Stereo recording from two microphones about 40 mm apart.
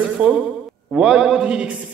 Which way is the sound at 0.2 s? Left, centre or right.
Right.